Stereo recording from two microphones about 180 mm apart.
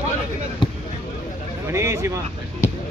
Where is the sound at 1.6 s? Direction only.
15° right (ahead or behind).